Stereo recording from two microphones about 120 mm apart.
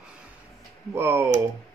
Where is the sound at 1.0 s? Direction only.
20° right (ahead or behind).